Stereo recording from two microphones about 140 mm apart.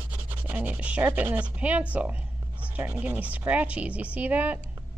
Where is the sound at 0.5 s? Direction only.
10° right (ahead or behind).